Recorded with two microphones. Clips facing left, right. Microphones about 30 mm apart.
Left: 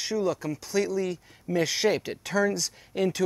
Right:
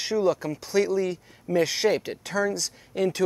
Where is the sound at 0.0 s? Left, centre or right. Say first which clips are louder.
Right 4 dB; centre.